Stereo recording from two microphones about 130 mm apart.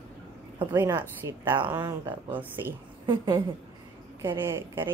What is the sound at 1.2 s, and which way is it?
A woman's voice, 25° right (ahead or behind).